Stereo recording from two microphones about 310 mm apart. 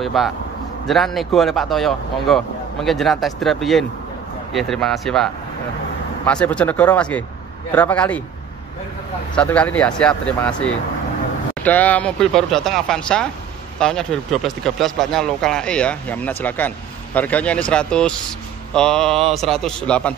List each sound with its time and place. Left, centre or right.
0.0 s a man's voice: centre
9.3 s speech: centre
11.6 s speech: centre